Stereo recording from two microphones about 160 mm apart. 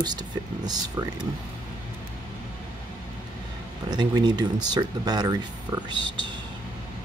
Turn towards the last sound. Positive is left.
turn(degrees=-25)  # may be behind; listen again after turning